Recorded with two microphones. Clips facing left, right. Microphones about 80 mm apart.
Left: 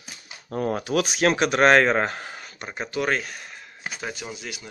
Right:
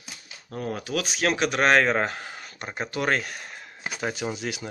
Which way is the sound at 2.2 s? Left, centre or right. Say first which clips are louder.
Even; centre.